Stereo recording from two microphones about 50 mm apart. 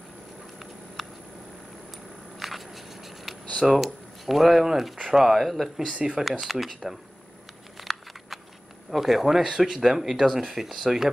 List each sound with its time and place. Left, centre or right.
2.3 s a sound: centre
3.6 s speech: centre
5.9 s speech: right
6.4 s speech: centre
7.8 s a sound: centre
8.9 s speech: centre